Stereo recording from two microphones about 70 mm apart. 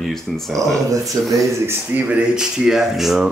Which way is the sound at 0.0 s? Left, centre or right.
Centre.